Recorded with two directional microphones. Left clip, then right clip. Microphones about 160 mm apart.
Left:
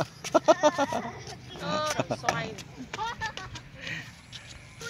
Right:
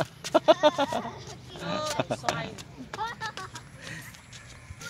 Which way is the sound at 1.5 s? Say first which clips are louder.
Left 2 dB; 15° left (ahead or behind).